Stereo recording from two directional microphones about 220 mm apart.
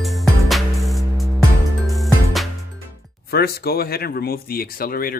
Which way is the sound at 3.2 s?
45° left (ahead or behind).